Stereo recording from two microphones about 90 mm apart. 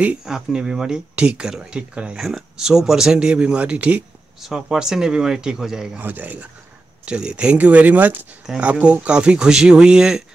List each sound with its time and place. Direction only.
0.0 s speech: 10° right (ahead or behind)
5.9 s speech: 20° right (ahead or behind)